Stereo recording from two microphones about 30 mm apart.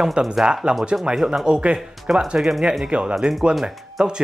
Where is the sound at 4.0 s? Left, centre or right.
Right.